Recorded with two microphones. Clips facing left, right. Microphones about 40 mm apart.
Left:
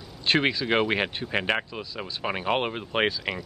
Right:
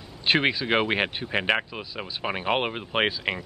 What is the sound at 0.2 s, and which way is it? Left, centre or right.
Speech, centre.